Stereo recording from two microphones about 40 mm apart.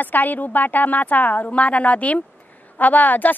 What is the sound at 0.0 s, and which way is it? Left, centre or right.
A woman's voice, left.